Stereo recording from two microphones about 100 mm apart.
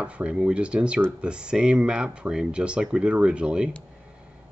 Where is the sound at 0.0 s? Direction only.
10° right (ahead or behind).